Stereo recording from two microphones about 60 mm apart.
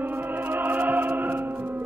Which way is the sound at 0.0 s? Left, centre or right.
Right.